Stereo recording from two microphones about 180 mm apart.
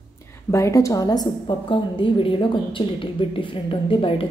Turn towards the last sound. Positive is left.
turn(degrees=30)  # may be behind; listen again after turning